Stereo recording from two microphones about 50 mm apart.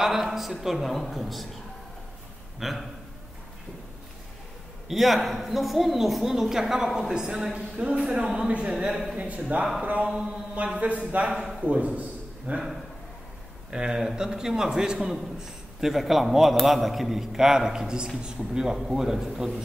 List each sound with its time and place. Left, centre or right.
0.0 s a woman's voice: centre
2.6 s a woman's voice: centre
4.8 s a woman's voice: centre
7.7 s speech: right
8.4 s mantra: right
9.8 s a sound: right
10.0 s mantra: centre
12.0 s a sound: right
13.7 s a man's voice: centre